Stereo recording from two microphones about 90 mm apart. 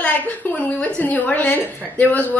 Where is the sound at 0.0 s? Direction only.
15° left (ahead or behind).